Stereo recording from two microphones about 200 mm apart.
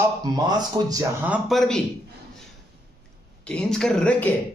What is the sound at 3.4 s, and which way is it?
Speech, 5° left (ahead or behind).